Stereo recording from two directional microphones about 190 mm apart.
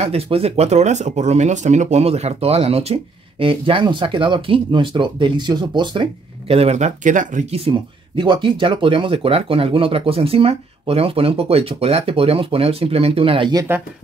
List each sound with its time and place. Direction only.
0.0 s speech: 30° right (ahead or behind)
8.2 s speech: 25° right (ahead or behind)